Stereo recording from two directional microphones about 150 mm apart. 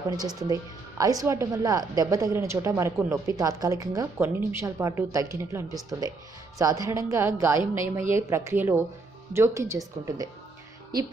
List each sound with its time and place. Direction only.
0.4 s a woman's voice: 25° right (ahead or behind)